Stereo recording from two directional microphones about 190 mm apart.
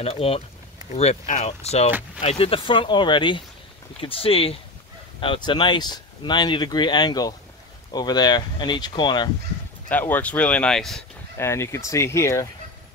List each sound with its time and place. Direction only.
0.0 s speech: 30° left (ahead or behind)
9.8 s speech: 10° left (ahead or behind)
11.3 s speech: 15° left (ahead or behind)